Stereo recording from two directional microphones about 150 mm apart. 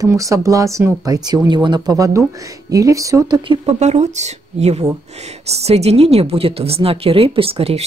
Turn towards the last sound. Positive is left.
turn(degrees=-40)  # may be behind; listen again after turning